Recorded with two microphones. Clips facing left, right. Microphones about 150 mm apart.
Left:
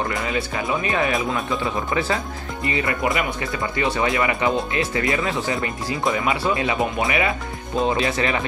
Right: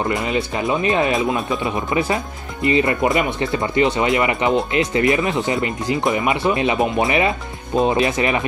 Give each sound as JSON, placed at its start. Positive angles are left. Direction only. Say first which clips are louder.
{"t": 0.1, "sound": "speech", "louder": "right 4 dB", "side_deg": -20}